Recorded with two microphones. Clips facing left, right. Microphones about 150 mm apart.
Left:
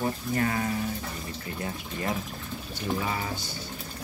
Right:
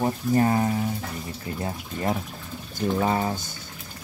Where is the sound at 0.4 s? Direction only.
30° right (ahead or behind).